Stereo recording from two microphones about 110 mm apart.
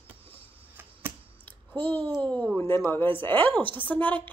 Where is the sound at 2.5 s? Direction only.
25° left (ahead or behind).